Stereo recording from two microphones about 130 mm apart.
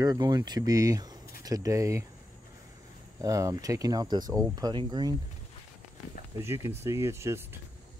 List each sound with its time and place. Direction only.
0.0 s speech: 30° right (ahead or behind)
3.2 s speech: 25° right (ahead or behind)
6.4 s speech: 20° right (ahead or behind)